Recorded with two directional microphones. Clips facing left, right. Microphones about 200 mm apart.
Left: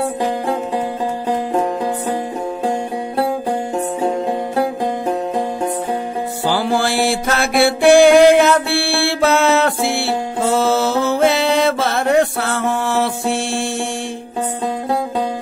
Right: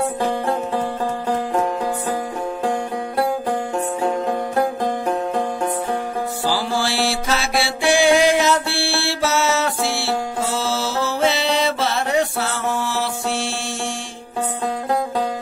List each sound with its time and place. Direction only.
0.2 s music: 15° left (ahead or behind)
4.0 s music: 20° left (ahead or behind)
6.4 s music: 55° left (ahead or behind)